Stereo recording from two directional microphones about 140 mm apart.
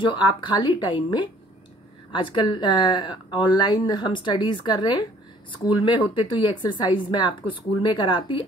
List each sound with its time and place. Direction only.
0.0 s speech: 35° left (ahead or behind)